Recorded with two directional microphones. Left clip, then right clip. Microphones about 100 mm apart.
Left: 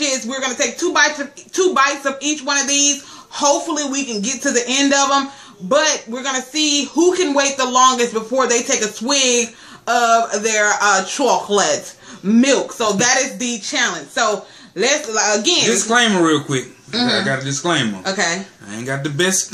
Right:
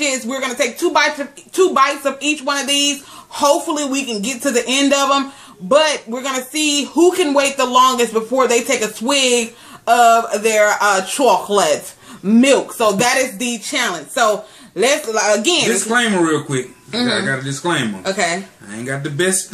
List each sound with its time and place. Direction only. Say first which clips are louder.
0.0 s a man's voice: right 1 dB; 40° right (ahead or behind)
15.9 s speech: left 2 dB; 15° left (ahead or behind)
18.0 s speech: right 1 dB; 45° right (ahead or behind)
18.9 s speech: even; 15° left (ahead or behind)